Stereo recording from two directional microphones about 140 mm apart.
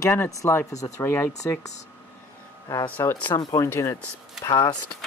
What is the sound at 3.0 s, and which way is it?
Speech, 15° left (ahead or behind).